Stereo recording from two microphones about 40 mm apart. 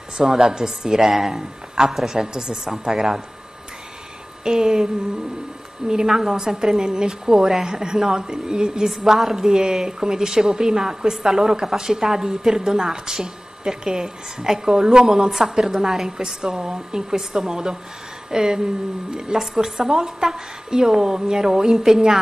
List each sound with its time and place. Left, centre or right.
0.2 s a woman's voice: centre
4.5 s a woman's voice: centre
5.9 s a woman's voice: centre